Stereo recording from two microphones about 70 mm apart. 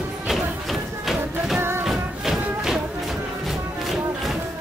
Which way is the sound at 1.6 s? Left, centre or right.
Right.